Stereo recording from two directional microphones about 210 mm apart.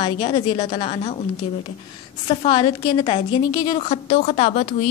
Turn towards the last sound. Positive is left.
turn(degrees=30)  # may be behind; listen again after turning